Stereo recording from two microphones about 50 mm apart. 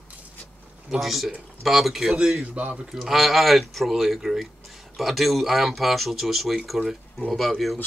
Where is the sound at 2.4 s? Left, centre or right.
Right.